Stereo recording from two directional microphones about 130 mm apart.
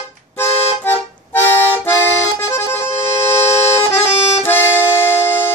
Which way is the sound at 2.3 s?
20° left (ahead or behind).